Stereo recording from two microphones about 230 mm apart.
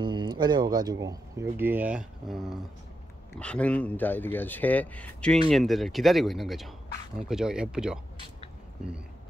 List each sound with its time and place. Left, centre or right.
0.0 s speech: centre